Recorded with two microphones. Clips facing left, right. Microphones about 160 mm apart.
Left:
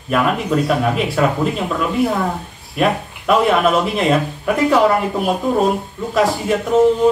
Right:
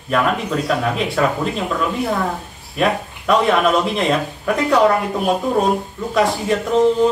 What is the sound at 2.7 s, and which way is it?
Speech, centre (ahead or behind).